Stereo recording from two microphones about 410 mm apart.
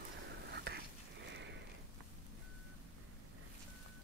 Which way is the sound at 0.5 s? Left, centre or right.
Right.